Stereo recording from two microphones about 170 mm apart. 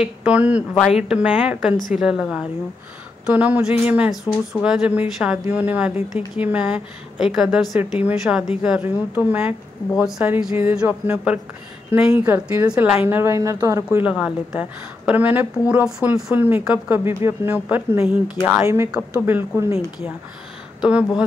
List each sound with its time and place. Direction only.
0.0 s a woman's voice: 5° right (ahead or behind)